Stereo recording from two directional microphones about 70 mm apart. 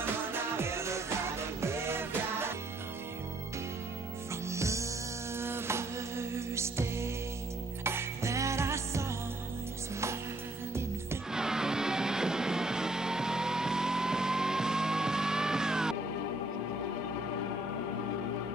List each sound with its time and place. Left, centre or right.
0.0 s music: right
4.5 s music: right
11.3 s music: centre